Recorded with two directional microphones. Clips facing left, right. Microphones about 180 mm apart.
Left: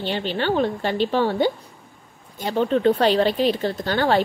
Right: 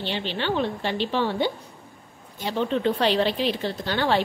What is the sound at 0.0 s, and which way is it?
A woman's voice, 45° left (ahead or behind).